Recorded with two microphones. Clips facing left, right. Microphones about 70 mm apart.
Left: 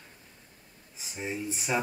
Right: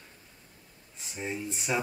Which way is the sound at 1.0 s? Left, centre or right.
Centre.